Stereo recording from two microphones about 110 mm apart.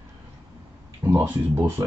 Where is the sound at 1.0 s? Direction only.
20° right (ahead or behind).